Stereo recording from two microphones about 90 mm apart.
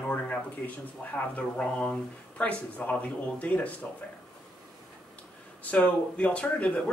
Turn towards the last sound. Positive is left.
turn(degrees=15)  # may be behind; listen again after turning